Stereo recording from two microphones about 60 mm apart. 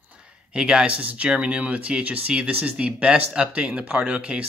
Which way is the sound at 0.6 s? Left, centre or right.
Centre.